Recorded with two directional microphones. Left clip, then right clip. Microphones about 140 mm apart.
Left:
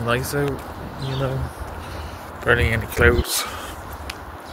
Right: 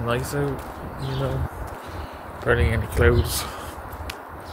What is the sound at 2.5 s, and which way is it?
Speech, 25° right (ahead or behind).